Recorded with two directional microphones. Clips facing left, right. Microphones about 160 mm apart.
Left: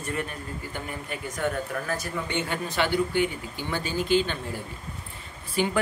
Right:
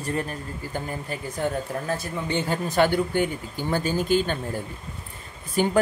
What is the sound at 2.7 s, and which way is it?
Speech, 50° right (ahead or behind).